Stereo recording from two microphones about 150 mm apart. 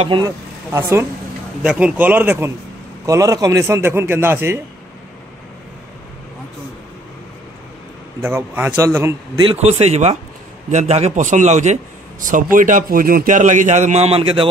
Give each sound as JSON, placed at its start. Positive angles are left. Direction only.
{"t": 0.2, "sound": "speech", "side_deg": -20}
{"t": 1.6, "sound": "a man's voice", "side_deg": -5}
{"t": 3.1, "sound": "a man's voice", "side_deg": -25}
{"t": 8.2, "sound": "a man's voice", "side_deg": -15}
{"t": 9.5, "sound": "a man's voice", "side_deg": -45}